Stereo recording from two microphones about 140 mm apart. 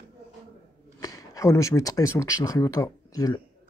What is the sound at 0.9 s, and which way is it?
Speech, 25° left (ahead or behind).